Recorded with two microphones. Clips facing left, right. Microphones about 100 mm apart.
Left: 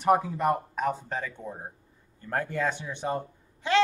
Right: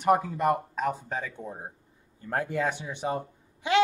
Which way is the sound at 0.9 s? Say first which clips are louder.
Even; 10° right (ahead or behind).